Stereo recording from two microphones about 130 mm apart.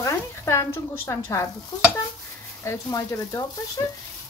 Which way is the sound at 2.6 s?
25° left (ahead or behind).